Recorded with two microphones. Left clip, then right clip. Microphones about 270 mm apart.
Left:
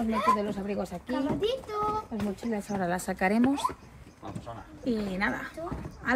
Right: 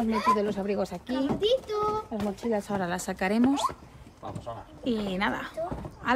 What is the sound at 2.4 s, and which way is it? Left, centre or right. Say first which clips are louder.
Speech: right 2 dB; centre.